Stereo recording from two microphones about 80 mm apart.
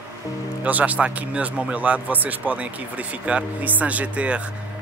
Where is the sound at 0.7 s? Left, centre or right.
Centre.